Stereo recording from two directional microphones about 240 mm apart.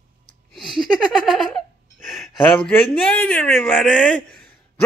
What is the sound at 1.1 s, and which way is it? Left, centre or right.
Speech, centre.